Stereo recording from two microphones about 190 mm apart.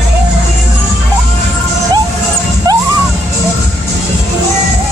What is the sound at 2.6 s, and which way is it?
Music, 20° right (ahead or behind).